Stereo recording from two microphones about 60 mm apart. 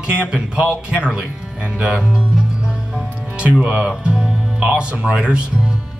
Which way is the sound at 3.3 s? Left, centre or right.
Centre.